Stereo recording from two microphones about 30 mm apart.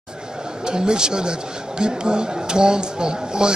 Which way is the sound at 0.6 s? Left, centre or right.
Right.